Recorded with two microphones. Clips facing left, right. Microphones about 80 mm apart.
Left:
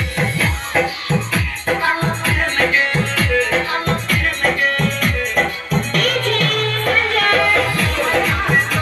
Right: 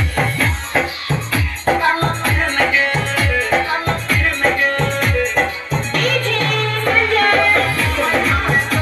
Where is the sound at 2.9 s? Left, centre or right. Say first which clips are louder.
Even; right.